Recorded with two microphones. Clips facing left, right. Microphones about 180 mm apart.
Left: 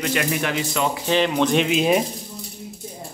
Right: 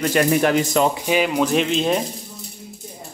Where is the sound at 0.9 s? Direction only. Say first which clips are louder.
Right 1 dB; 10° right (ahead or behind); by 2.0 s 5° left (ahead or behind).